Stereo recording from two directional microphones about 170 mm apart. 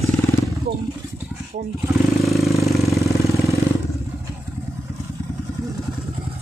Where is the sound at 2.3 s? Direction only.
Centre (ahead or behind).